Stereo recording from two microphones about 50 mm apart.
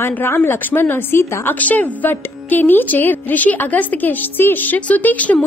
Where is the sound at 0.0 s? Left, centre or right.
Left.